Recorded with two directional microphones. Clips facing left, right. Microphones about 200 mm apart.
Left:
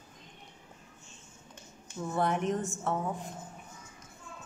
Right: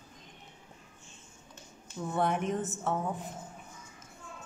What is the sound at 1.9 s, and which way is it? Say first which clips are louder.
Speech: even; centre (ahead or behind).